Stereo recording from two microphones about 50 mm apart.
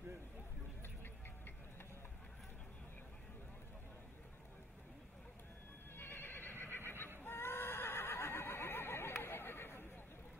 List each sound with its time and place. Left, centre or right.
5.9 s neigh: left